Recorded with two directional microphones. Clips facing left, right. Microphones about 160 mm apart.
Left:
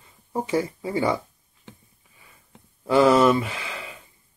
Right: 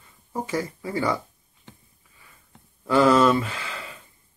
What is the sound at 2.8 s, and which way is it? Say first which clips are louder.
Speech: left 1 dB; 20° left (ahead or behind).